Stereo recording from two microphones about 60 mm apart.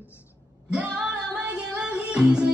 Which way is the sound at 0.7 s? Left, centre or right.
Centre.